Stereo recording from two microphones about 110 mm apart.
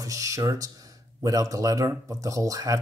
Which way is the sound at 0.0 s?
30° right (ahead or behind).